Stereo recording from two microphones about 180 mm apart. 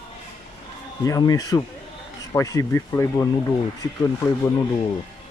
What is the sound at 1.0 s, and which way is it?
Speech, 20° left (ahead or behind).